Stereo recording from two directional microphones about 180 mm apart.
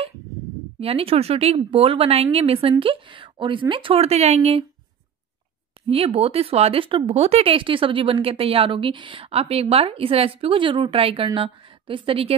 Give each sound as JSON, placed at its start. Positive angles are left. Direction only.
{"t": 0.7, "sound": "speech", "side_deg": -30}
{"t": 5.9, "sound": "speech", "side_deg": -35}